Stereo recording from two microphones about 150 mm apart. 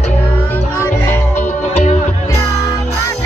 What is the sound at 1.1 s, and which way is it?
Music, 10° left (ahead or behind).